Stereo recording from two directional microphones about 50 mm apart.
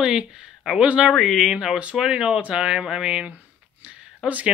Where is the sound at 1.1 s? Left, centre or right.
Centre.